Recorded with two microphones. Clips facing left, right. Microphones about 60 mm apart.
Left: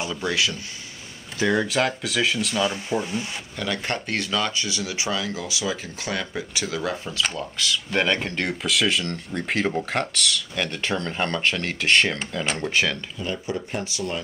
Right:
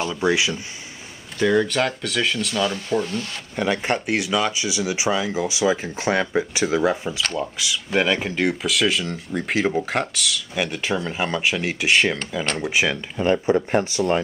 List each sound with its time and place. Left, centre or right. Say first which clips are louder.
0.1 s speech: right 4 dB; centre
1.4 s speech: right 3 dB; centre
3.5 s speech: right 6 dB; right
13.2 s speech: right 12 dB; right